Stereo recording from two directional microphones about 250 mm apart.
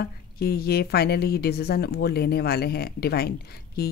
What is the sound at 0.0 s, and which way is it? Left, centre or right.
Speech, left.